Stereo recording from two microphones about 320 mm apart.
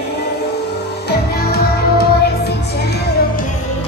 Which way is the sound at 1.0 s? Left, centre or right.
Left.